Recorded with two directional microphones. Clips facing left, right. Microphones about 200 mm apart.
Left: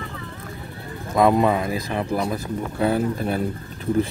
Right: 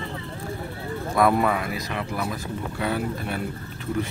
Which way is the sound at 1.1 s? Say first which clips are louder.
Left 3 dB; 20° left (ahead or behind).